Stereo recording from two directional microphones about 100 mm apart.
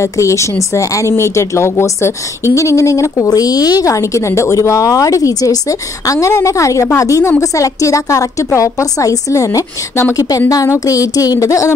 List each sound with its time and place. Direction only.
0.0 s speech: 30° left (ahead or behind)